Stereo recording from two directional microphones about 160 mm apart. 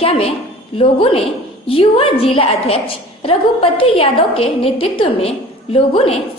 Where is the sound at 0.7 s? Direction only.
35° left (ahead or behind).